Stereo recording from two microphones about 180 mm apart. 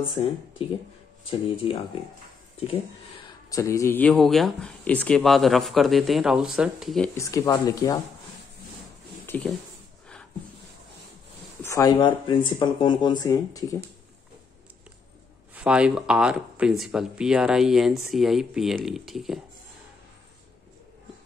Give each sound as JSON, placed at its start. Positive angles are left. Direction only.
{"t": 0.1, "sound": "speech", "side_deg": 35}
{"t": 3.4, "sound": "speech", "side_deg": 15}
{"t": 7.2, "sound": "speech", "side_deg": 20}
{"t": 9.2, "sound": "a sound", "side_deg": 10}
{"t": 11.6, "sound": "speech", "side_deg": 20}
{"t": 15.5, "sound": "speech", "side_deg": -5}